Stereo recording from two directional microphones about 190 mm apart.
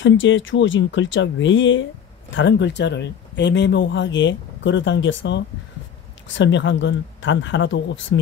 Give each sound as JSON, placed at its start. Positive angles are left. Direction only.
{"t": 0.0, "sound": "speech", "side_deg": 80}